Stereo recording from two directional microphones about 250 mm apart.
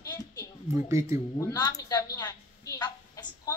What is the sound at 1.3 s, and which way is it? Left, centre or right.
A woman's voice, centre.